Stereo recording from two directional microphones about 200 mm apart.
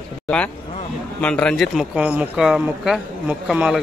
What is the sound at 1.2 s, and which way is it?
Speech, 5° left (ahead or behind).